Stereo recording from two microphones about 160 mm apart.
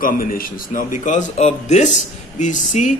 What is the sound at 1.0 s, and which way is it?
Speech, 50° left (ahead or behind).